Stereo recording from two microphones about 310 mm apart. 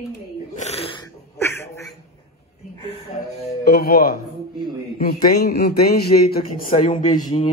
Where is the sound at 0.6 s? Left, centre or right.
Centre.